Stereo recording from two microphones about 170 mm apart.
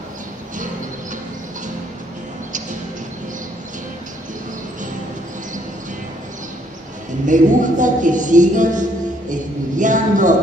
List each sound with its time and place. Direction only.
7.2 s a woman's voice: 50° right (ahead or behind)